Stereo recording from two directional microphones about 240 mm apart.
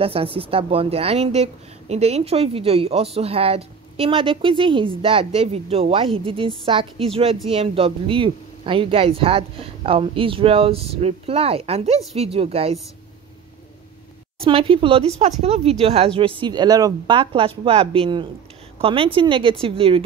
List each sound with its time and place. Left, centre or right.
0.0 s a woman's voice: right
14.4 s a woman's voice: right